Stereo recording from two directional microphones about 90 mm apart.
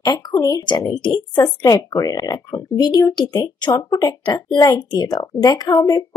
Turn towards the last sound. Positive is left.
turn(degrees=45)  # may be behind; listen again after turning